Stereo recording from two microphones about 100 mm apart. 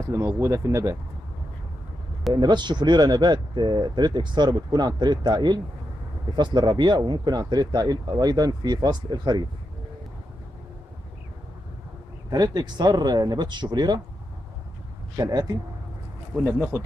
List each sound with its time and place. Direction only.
0.0 s speech: 30° right (ahead or behind)
2.3 s speech: 45° right (ahead or behind)
12.3 s speech: 40° right (ahead or behind)
15.1 s speech: 40° right (ahead or behind)
16.4 s speech: 20° right (ahead or behind)